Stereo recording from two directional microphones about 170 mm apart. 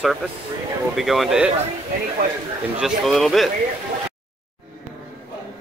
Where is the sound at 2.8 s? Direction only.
Centre (ahead or behind).